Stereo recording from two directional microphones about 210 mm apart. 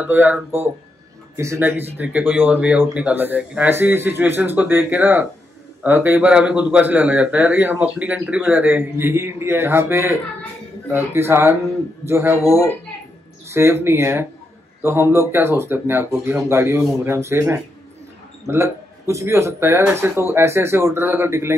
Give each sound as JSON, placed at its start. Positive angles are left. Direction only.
{"t": 0.0, "sound": "a man's voice", "side_deg": -10}
{"t": 12.4, "sound": "a woman's voice", "side_deg": 15}
{"t": 13.5, "sound": "a man's voice", "side_deg": -10}